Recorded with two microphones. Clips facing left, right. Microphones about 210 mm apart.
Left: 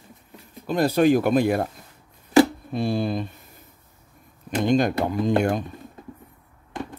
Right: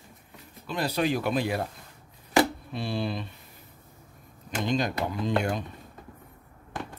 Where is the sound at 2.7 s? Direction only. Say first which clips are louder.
Left 7 dB; 45° left (ahead or behind).